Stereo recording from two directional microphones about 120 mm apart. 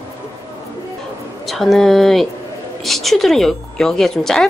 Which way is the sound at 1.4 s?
Centre (ahead or behind).